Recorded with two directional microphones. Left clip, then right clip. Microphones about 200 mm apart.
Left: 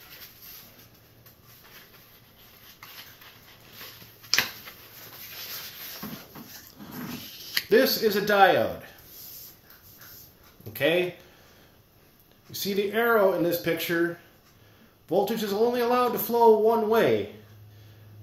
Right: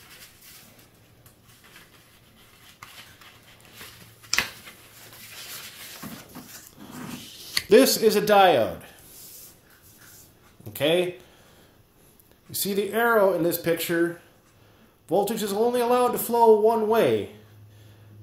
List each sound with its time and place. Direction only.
7.7 s speech: 40° right (ahead or behind)
10.7 s speech: 35° right (ahead or behind)
12.4 s speech: 35° right (ahead or behind)
15.0 s speech: 30° right (ahead or behind)